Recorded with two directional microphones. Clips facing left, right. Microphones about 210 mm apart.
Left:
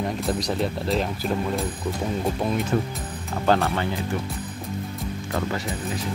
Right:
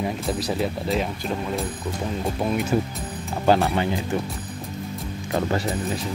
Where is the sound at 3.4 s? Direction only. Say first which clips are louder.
Right 2 dB; 15° right (ahead or behind).